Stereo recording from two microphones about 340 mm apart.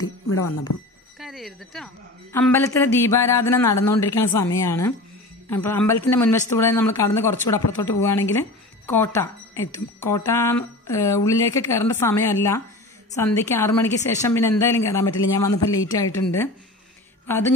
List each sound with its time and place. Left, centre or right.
0.3 s speech: left
1.2 s speech: centre